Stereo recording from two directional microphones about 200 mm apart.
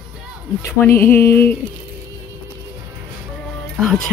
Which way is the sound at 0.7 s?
10° left (ahead or behind).